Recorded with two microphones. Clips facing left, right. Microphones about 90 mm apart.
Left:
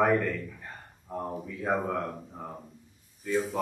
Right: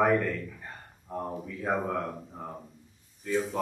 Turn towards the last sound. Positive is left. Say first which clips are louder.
# even
turn(degrees=0)  # may be behind; listen again after turning